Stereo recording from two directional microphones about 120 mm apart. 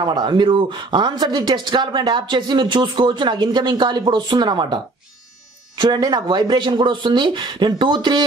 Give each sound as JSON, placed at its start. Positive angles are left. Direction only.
{"t": 0.0, "sound": "speech", "side_deg": -40}
{"t": 5.8, "sound": "speech", "side_deg": -35}